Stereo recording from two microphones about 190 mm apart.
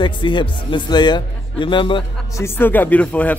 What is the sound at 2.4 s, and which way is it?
Speech, 10° left (ahead or behind).